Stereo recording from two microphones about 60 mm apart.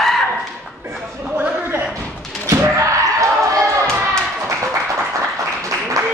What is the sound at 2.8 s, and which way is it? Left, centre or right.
Basketball bounce, right.